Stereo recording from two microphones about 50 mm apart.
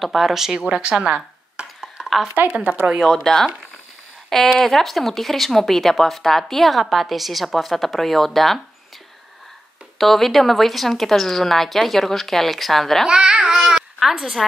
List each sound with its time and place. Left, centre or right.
0.0 s speech: centre
2.4 s speech: right
3.0 s speech: centre
4.3 s speech: centre
9.9 s speech: centre
13.0 s a child's voice: centre
13.6 s a sound: centre